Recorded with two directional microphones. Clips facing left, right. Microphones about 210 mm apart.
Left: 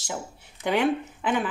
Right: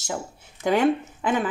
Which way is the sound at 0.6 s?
45° right (ahead or behind).